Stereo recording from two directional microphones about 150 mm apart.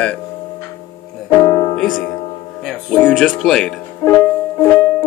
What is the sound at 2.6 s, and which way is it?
Speech, 5° left (ahead or behind).